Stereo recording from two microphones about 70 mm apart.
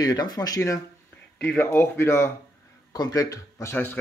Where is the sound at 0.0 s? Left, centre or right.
Left.